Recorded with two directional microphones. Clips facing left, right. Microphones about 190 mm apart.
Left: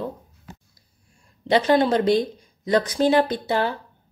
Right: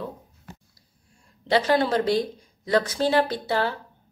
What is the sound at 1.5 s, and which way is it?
A woman's voice, 20° left (ahead or behind).